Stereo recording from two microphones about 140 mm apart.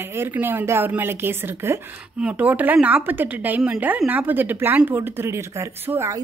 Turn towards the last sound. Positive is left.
turn(degrees=-20)  # may be behind; listen again after turning